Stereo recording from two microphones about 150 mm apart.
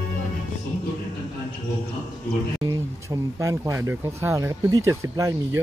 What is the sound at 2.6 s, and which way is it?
Speech, 20° right (ahead or behind).